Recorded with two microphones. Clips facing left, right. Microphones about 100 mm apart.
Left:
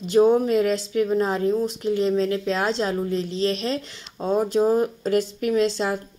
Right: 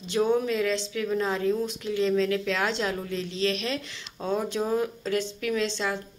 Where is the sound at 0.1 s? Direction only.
35° left (ahead or behind).